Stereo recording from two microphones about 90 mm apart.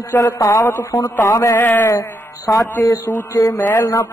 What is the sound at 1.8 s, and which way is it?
Music, 40° left (ahead or behind).